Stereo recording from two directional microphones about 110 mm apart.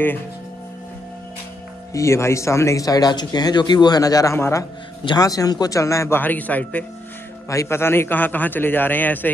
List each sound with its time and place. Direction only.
2.0 s speech: 25° left (ahead or behind)
5.0 s a man's voice: 35° left (ahead or behind); by 6.9 s 15° left (ahead or behind)
7.4 s a man's voice: 25° left (ahead or behind)